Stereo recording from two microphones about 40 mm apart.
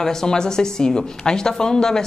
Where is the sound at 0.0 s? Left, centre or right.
Centre.